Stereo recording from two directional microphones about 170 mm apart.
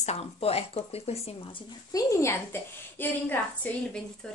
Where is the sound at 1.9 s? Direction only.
20° left (ahead or behind).